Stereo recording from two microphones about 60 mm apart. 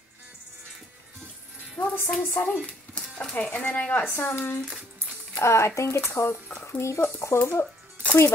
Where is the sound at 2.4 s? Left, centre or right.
Left.